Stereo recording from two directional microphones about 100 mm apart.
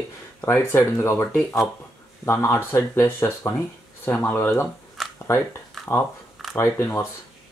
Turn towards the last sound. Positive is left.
turn(degrees=25)  # may be behind; listen again after turning